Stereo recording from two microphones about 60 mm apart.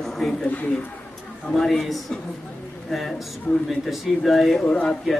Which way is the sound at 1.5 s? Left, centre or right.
Centre.